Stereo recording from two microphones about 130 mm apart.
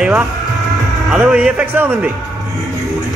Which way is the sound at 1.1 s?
10° right (ahead or behind).